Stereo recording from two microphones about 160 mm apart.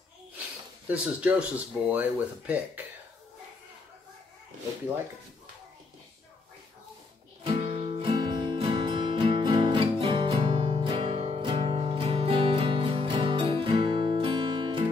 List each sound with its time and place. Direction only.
0.8 s speech: 10° right (ahead or behind)
7.4 s music: 40° right (ahead or behind)